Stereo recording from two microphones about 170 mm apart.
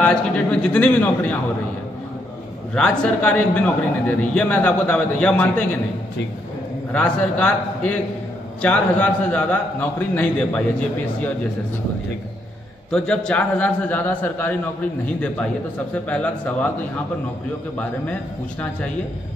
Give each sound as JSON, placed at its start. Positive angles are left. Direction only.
{"t": 0.0, "sound": "a man's voice", "side_deg": 5}
{"t": 2.7, "sound": "a man's voice", "side_deg": 5}
{"t": 6.9, "sound": "a man's voice", "side_deg": 5}
{"t": 12.9, "sound": "a man's voice", "side_deg": 5}